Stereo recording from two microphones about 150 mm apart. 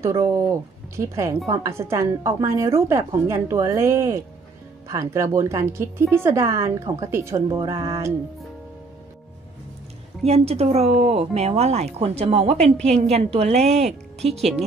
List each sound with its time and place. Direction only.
0.0 s a woman's voice: 20° right (ahead or behind)
10.2 s speech: 45° right (ahead or behind)